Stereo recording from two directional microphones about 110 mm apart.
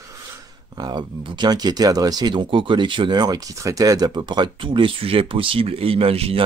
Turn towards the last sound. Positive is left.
turn(degrees=-60)  # may be behind; listen again after turning